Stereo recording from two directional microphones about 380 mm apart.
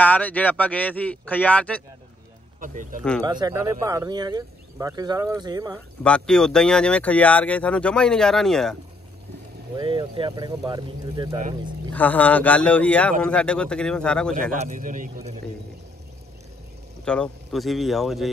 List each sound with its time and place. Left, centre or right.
0.0 s speech: centre
2.6 s speech: centre
3.0 s speech: centre
3.3 s speech: centre
6.0 s speech: centre
9.8 s speech: centre
11.9 s speech: centre
14.3 s speech: right
17.0 s speech: centre